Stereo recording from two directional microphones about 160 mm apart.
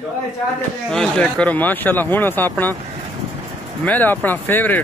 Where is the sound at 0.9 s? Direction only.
5° left (ahead or behind).